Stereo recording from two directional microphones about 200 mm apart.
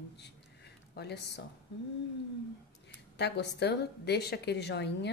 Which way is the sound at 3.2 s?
55° left (ahead or behind).